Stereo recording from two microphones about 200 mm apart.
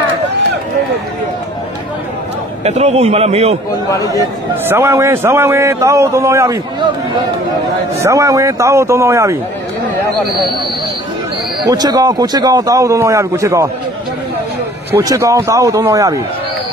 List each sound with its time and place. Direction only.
2.6 s a man's voice: 30° right (ahead or behind)
3.9 s speech: 15° left (ahead or behind)
4.2 s a man's voice: 15° right (ahead or behind)
8.0 s a man's voice: 15° right (ahead or behind)
11.6 s a man's voice: 20° right (ahead or behind)
14.9 s a man's voice: 10° right (ahead or behind)